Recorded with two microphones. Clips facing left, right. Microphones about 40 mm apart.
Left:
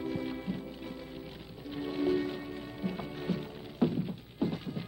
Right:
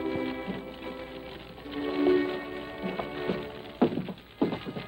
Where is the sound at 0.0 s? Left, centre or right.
Right.